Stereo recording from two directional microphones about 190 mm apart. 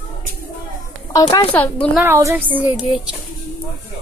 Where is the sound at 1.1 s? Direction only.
20° left (ahead or behind).